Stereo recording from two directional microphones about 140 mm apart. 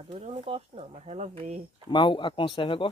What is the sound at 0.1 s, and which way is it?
Speech, 45° right (ahead or behind).